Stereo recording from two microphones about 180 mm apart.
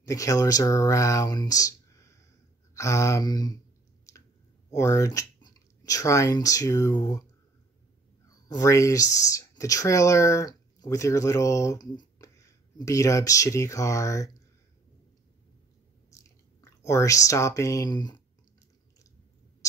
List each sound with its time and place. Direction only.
0.0 s speech: 20° left (ahead or behind)
4.1 s squish: 15° left (ahead or behind)
4.7 s speech: 15° left (ahead or behind)
8.5 s speech: 20° left (ahead or behind)
16.6 s speech: 15° left (ahead or behind)